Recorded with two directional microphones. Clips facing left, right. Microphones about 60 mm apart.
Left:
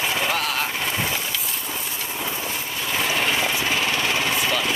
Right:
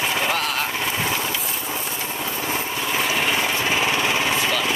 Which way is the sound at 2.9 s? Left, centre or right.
Centre.